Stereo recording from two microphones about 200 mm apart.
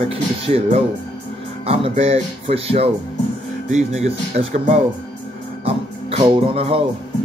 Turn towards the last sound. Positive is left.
turn(degrees=-30)  # may be behind; listen again after turning